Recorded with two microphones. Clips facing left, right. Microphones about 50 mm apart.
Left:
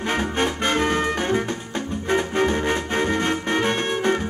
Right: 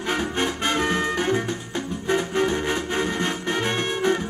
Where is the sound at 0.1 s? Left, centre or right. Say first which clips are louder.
Left 1 dB; left.